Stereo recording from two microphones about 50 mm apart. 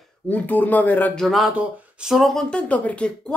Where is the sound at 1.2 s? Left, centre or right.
Centre.